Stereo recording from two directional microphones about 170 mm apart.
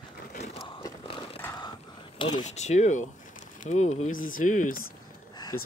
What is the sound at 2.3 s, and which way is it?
Speech, 45° left (ahead or behind).